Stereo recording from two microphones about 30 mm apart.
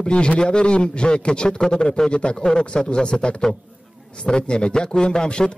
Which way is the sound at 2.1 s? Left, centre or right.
Left.